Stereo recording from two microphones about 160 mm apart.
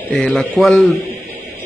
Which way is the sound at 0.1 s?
5° left (ahead or behind).